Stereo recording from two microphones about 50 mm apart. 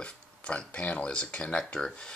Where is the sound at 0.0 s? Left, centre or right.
Left.